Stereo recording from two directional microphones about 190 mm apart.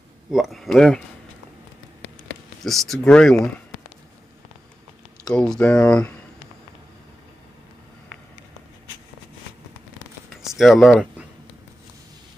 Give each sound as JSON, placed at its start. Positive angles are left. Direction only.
{"t": 0.3, "sound": "speech", "side_deg": 0}
{"t": 2.6, "sound": "speech", "side_deg": 0}
{"t": 5.2, "sound": "speech", "side_deg": 5}
{"t": 10.3, "sound": "a sound", "side_deg": 0}